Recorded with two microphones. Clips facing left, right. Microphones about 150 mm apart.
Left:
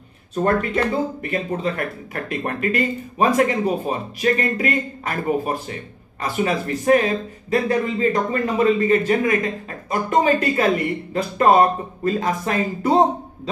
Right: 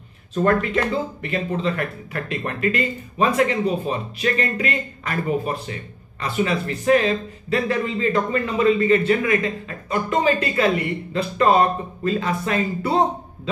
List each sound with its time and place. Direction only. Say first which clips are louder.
0.4 s speech: even; 30° left (ahead or behind)
1.2 s speech: even; 45° left (ahead or behind)
12.0 s speech: left 1 dB; 40° left (ahead or behind)